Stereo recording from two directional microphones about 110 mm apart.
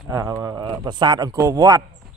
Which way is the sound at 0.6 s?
40° right (ahead or behind).